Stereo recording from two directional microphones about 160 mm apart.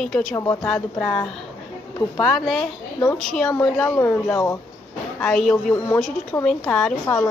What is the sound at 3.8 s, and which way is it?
Speech, 20° left (ahead or behind).